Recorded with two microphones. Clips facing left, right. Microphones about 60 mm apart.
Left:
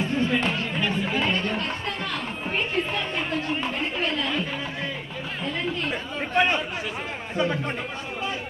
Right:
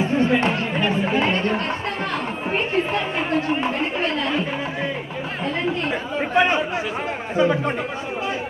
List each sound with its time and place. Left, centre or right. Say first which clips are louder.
0.0 s a sound: right 5 dB; centre
0.6 s chatter: right 5 dB; right
1.3 s a sound: right 5 dB; right
3.4 s chatter: right 5 dB; centre
6.3 s chatter: right 4 dB; centre
7.3 s a man's voice: right 6 dB; centre